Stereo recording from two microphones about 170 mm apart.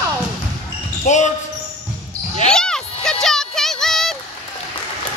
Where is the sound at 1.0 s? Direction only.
45° left (ahead or behind).